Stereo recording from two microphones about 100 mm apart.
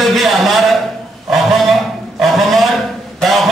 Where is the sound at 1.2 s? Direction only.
Centre (ahead or behind).